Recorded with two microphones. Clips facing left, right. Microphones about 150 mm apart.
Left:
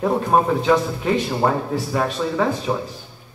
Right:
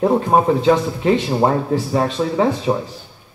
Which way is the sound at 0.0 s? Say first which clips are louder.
Right 3 dB; 20° right (ahead or behind).